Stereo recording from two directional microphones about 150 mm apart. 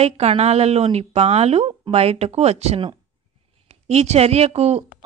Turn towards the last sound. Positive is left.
turn(degrees=-45)  # may be behind; listen again after turning